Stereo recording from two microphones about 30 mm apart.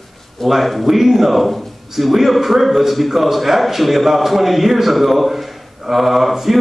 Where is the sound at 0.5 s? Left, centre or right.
Centre.